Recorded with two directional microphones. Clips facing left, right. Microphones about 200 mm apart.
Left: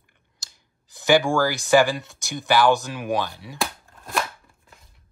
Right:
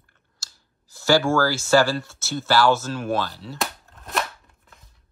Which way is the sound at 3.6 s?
Centre (ahead or behind).